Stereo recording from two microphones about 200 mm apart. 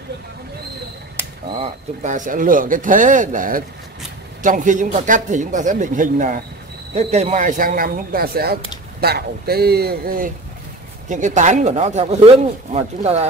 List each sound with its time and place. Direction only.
1.5 s speech: 35° right (ahead or behind)